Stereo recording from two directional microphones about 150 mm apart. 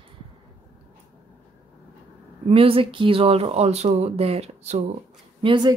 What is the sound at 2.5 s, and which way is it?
Speech, 35° right (ahead or behind).